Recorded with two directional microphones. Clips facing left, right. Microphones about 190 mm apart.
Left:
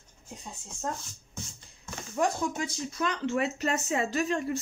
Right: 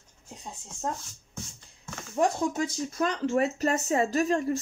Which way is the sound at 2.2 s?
25° right (ahead or behind).